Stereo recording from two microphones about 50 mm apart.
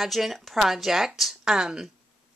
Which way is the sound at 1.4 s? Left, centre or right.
Centre.